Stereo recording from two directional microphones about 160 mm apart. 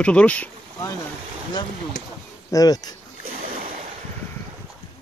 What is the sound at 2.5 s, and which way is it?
Speech, 25° left (ahead or behind).